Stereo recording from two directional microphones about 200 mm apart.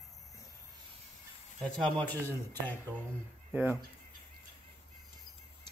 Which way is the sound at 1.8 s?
5° left (ahead or behind).